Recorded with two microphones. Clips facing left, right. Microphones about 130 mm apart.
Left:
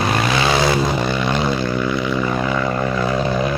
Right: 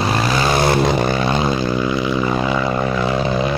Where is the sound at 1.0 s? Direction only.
40° right (ahead or behind).